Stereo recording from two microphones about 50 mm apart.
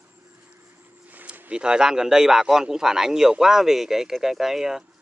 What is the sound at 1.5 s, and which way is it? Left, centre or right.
A man's voice, centre.